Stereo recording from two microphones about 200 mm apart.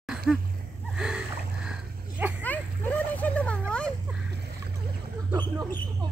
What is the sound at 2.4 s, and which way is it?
Vehicle, 10° left (ahead or behind).